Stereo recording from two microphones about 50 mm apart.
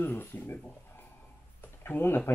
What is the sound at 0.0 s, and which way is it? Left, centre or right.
Speech, left.